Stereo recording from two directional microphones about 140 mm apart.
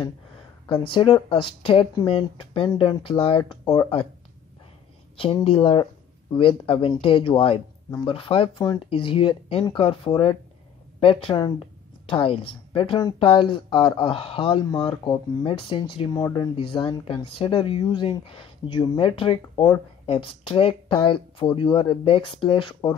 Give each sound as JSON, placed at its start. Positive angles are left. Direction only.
{"t": 0.7, "sound": "speech", "side_deg": 35}
{"t": 5.1, "sound": "speech", "side_deg": 40}